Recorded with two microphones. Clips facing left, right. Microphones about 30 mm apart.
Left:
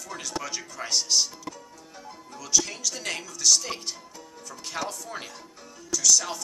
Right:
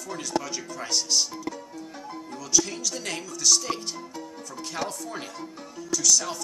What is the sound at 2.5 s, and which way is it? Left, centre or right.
Speech, centre.